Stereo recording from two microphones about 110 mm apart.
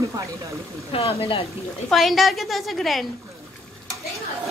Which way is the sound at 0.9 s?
60° left (ahead or behind).